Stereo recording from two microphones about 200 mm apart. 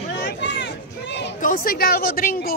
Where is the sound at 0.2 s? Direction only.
60° left (ahead or behind).